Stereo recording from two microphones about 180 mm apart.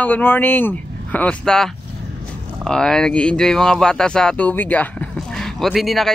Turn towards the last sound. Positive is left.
turn(degrees=0)  # may be behind; listen again after turning